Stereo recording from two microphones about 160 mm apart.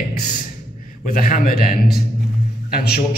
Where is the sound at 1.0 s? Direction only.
60° left (ahead or behind).